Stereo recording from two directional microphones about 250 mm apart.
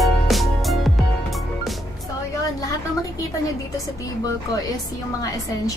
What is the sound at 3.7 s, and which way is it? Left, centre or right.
Speech, centre.